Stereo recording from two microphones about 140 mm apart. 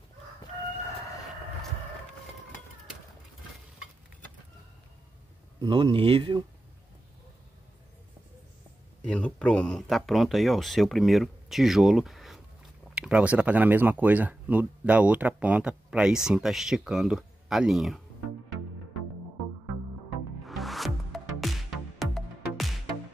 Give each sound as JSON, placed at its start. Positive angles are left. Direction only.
{"t": 5.6, "sound": "speech", "side_deg": -35}
{"t": 9.0, "sound": "speech", "side_deg": 10}
{"t": 20.4, "sound": "music", "side_deg": 0}